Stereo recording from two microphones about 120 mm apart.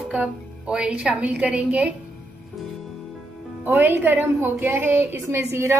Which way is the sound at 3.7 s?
20° right (ahead or behind).